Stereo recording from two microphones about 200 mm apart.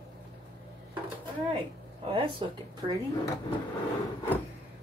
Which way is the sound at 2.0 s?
25° right (ahead or behind).